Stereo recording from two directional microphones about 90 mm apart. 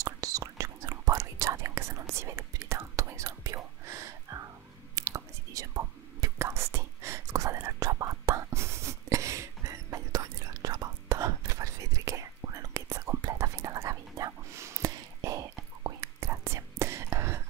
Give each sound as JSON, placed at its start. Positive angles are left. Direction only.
{"t": 0.0, "sound": "whispering", "side_deg": -40}